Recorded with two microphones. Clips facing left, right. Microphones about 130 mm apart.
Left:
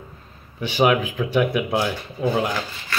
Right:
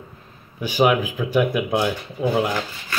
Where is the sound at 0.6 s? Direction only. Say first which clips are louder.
Even; 10° right (ahead or behind).